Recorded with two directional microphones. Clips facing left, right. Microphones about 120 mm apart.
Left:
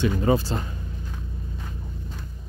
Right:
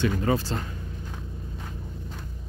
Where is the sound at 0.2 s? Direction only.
15° left (ahead or behind).